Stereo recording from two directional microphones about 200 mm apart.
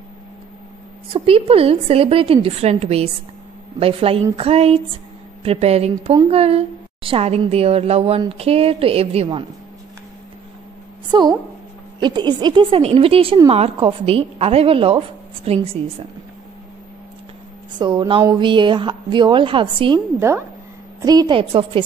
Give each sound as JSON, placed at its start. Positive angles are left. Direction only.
{"t": 1.1, "sound": "a woman's voice", "side_deg": -30}
{"t": 11.1, "sound": "a woman's voice", "side_deg": -20}
{"t": 17.7, "sound": "a woman's voice", "side_deg": -20}